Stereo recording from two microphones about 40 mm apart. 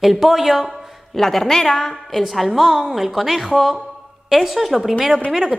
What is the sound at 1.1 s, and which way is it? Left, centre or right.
Speech, centre.